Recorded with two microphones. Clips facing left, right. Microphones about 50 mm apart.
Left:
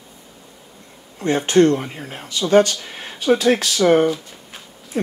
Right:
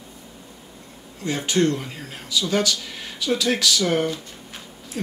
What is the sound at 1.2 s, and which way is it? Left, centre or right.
Speech, left.